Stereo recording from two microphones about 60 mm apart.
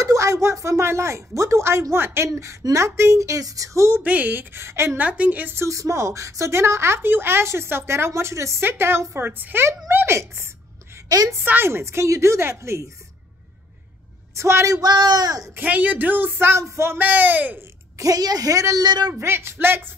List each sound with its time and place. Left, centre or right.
0.0 s speech: right
4.0 s speech: right
4.9 s speech: right
5.7 s a woman's voice: right
8.5 s a woman's voice: right
14.3 s speech: right
14.8 s speech: right
15.6 s speech: right
17.0 s speech: right
17.9 s a woman's voice: right
19.1 s speech: right